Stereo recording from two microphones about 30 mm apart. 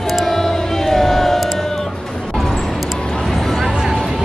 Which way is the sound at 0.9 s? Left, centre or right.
Centre.